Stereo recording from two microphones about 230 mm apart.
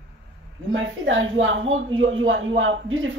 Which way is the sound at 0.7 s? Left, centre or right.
Right.